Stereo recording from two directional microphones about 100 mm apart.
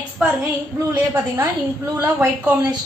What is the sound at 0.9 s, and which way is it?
A woman's voice, 20° right (ahead or behind).